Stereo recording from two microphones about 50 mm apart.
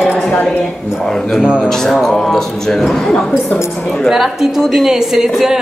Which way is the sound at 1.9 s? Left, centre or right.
Centre.